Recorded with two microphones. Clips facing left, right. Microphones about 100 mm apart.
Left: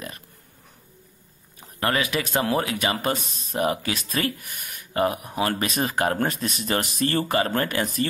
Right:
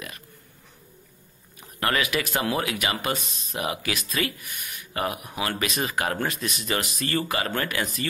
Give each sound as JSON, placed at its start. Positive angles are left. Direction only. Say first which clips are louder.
{"t": 1.6, "sound": "speech", "louder": "left 1 dB", "side_deg": 25}
{"t": 3.3, "sound": "speech", "louder": "left 1 dB", "side_deg": 0}
{"t": 3.5, "sound": "speech", "louder": "left 5 dB", "side_deg": 40}
{"t": 4.9, "sound": "speech", "louder": "left 5 dB", "side_deg": 35}